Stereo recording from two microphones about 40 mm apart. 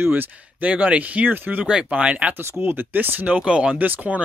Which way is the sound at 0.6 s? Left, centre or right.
Right.